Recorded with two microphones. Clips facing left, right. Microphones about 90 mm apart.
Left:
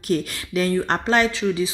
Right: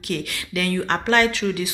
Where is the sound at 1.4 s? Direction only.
20° left (ahead or behind).